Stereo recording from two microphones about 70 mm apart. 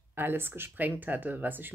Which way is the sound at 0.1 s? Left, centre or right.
Right.